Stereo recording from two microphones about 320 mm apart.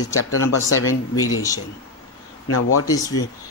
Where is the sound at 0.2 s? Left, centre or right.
Left.